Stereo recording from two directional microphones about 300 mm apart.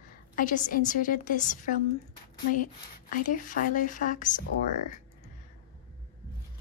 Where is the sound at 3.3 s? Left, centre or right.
Left.